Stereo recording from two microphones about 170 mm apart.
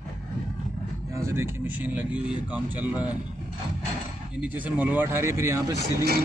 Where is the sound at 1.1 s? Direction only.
15° right (ahead or behind).